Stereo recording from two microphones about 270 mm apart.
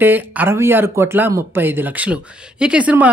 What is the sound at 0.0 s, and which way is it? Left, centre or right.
A woman's voice, centre.